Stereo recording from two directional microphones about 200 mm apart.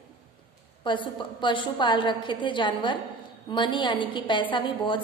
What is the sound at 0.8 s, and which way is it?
A woman's voice, 25° left (ahead or behind).